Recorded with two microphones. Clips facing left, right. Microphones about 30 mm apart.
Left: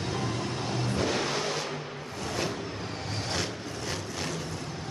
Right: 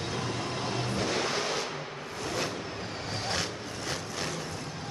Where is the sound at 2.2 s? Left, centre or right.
Centre.